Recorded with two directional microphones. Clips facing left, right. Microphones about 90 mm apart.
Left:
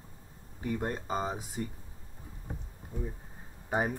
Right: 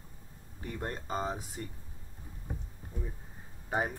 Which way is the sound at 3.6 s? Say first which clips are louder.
Left 2 dB; 15° left (ahead or behind).